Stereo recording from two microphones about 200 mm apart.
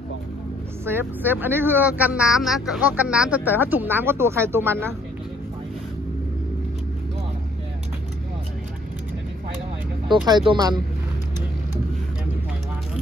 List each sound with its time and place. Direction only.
0.8 s speech: 10° right (ahead or behind)
10.0 s speech: 20° right (ahead or behind)